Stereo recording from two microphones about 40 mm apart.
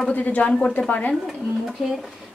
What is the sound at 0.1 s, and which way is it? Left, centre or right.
A woman's voice, left.